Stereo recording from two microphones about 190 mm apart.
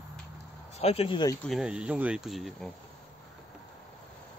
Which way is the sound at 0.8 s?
30° left (ahead or behind).